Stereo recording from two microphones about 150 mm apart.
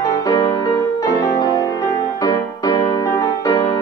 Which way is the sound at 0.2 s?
25° left (ahead or behind).